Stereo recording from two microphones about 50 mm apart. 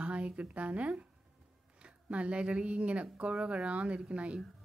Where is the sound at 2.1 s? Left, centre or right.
Right.